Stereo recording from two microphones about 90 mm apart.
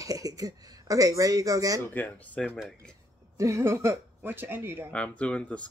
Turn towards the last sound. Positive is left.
turn(degrees=15)  # may be behind; listen again after turning